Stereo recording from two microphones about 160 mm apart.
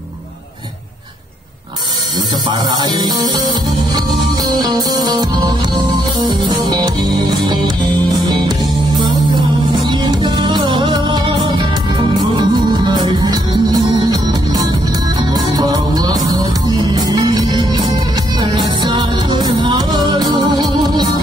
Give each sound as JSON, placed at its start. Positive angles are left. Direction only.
{"t": 2.4, "sound": "music", "side_deg": -25}
{"t": 4.6, "sound": "music", "side_deg": -25}